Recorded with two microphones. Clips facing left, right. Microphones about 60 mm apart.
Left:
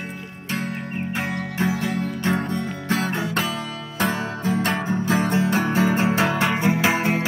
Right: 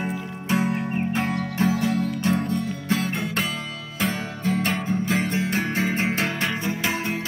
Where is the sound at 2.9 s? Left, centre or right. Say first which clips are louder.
Left 2 dB; left.